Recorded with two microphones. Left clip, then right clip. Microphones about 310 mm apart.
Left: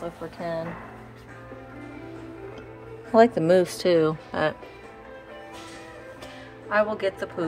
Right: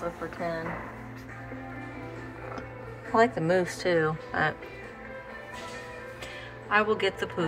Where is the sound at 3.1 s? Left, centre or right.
Left.